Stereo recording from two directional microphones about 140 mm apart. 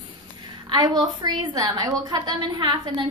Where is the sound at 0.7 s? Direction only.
30° right (ahead or behind).